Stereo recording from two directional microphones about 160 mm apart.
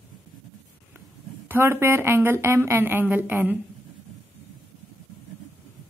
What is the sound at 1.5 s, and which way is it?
A woman's voice, 15° right (ahead or behind).